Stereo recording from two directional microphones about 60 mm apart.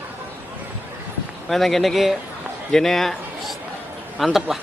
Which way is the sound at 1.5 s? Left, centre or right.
Centre.